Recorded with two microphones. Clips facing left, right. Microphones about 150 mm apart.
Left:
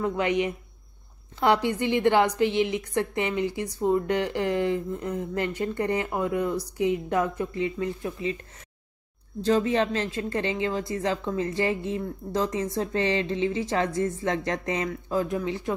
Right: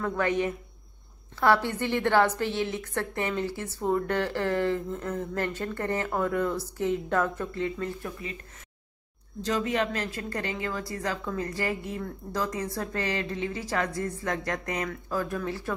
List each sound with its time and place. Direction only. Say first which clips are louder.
0.0 s a woman's voice: left 2 dB; 15° left (ahead or behind)
9.4 s a woman's voice: left 5 dB; 30° left (ahead or behind)